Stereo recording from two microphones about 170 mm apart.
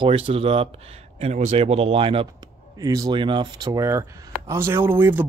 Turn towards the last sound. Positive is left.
turn(degrees=-10)  # may be behind; listen again after turning